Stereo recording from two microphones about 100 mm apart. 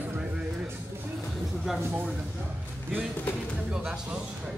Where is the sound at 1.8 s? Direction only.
25° right (ahead or behind).